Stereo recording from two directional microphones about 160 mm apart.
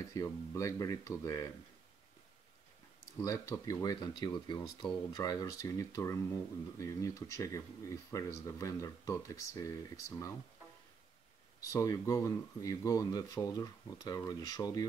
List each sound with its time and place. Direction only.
0.1 s speech: 20° left (ahead or behind)
3.2 s speech: 20° left (ahead or behind)
11.6 s speech: 20° left (ahead or behind)